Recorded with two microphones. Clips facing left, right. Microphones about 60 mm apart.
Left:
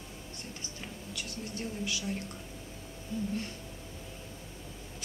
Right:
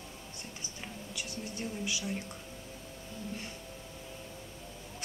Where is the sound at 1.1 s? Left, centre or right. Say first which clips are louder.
Left 1 dB; centre.